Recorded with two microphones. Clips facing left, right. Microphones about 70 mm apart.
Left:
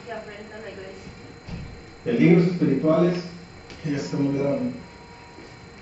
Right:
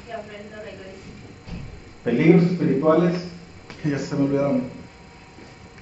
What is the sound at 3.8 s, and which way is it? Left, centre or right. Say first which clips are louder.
Speech: right 2 dB; right.